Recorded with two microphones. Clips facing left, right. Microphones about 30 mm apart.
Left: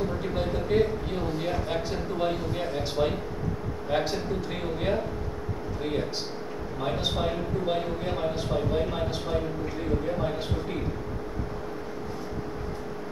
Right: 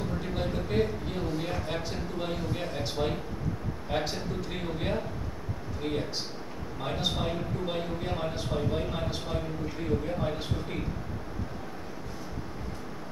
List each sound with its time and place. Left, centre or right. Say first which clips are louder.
0.2 s a man's voice: left 4 dB; centre
6.8 s a man's voice: left 3 dB; centre